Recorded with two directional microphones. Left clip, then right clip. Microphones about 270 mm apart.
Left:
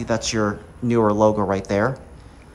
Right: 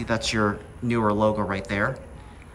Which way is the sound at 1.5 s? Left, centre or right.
Centre.